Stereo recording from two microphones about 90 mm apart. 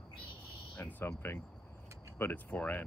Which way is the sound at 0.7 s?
20° left (ahead or behind).